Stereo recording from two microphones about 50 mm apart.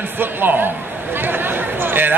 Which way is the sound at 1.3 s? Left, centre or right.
Right.